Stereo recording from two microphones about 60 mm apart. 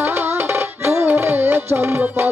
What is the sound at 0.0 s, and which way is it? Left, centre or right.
Music, right.